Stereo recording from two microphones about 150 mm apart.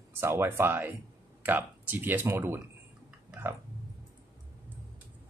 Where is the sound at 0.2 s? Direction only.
15° right (ahead or behind).